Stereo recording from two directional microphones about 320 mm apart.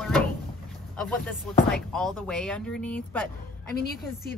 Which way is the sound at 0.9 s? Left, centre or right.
Centre.